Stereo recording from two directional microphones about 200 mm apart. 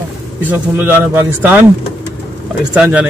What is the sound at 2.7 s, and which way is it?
Speech, 5° right (ahead or behind).